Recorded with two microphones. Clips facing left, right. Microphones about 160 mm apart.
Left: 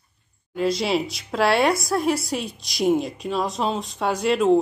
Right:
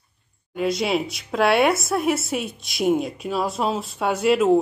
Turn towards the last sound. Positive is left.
turn(degrees=0)  # may be behind; listen again after turning